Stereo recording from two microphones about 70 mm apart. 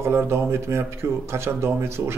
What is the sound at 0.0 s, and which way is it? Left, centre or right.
A man's voice, right.